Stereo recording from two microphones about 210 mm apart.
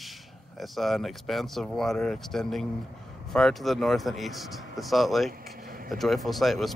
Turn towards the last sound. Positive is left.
turn(degrees=0)  # may be behind; listen again after turning